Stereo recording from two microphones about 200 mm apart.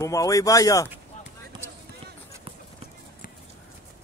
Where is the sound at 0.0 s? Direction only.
15° left (ahead or behind).